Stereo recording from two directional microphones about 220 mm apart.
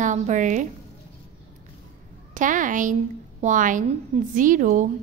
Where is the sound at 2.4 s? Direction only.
35° right (ahead or behind).